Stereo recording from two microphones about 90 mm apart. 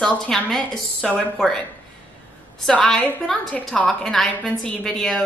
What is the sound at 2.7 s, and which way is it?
A woman's voice, 10° left (ahead or behind).